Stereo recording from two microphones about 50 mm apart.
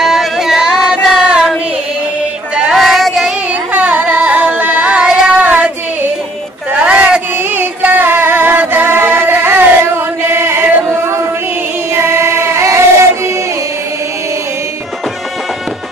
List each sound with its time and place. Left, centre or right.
0.0 s music: centre
2.7 s child singing: centre
3.7 s a sound: right; by 5.2 s centre
5.4 s child singing: right
6.7 s a sound: right
7.3 s music: right